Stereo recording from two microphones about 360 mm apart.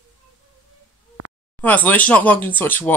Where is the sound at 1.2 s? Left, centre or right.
Right.